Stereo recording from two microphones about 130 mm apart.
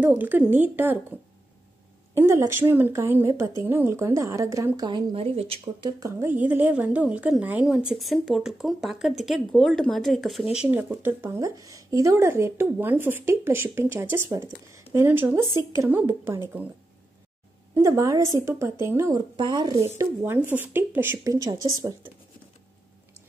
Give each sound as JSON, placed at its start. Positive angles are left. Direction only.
{"t": 0.0, "sound": "a woman's voice", "side_deg": -15}
{"t": 2.1, "sound": "speech", "side_deg": -20}
{"t": 5.8, "sound": "a woman's voice", "side_deg": -30}
{"t": 10.5, "sound": "speech", "side_deg": -10}
{"t": 17.7, "sound": "speech", "side_deg": -25}
{"t": 19.3, "sound": "a woman's voice", "side_deg": -35}
{"t": 20.0, "sound": "a woman's voice", "side_deg": -20}